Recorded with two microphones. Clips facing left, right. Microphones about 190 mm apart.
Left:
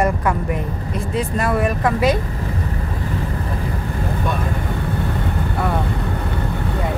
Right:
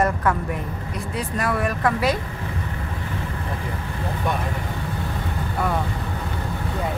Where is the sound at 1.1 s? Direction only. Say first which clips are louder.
Left 5 dB; 25° left (ahead or behind).